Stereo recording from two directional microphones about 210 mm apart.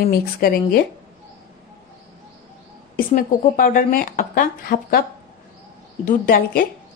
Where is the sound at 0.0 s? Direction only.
45° left (ahead or behind).